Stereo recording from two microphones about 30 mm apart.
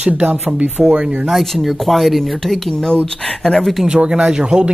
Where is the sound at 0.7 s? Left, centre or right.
Right.